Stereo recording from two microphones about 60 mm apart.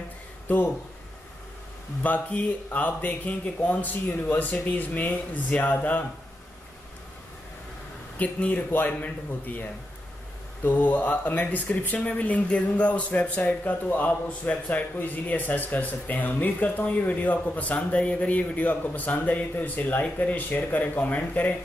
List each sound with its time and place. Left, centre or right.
2.0 s speech: left
8.2 s speech: left